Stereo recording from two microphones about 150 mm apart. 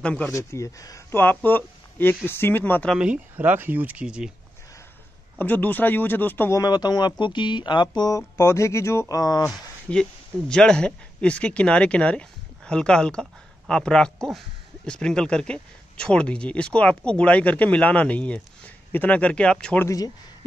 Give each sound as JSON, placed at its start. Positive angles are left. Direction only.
{"t": 0.0, "sound": "speech", "side_deg": 10}
{"t": 0.3, "sound": "speech", "side_deg": 20}
{"t": 3.0, "sound": "speech", "side_deg": -10}
{"t": 5.4, "sound": "speech", "side_deg": 10}
{"t": 6.6, "sound": "speech", "side_deg": 25}
{"t": 9.5, "sound": "speech", "side_deg": 5}